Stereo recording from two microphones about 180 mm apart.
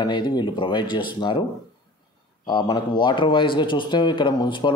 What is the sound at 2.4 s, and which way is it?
Speech, 25° left (ahead or behind).